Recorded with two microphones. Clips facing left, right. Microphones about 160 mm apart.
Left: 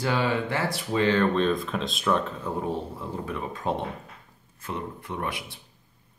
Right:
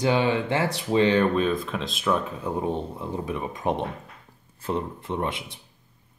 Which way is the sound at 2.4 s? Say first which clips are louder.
Right 2 dB; 20° right (ahead or behind).